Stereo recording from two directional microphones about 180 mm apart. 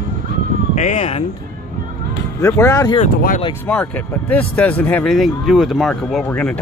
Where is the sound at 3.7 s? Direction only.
5° left (ahead or behind).